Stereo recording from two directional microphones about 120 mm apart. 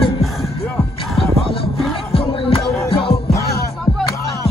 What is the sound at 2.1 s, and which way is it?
Music, 50° left (ahead or behind).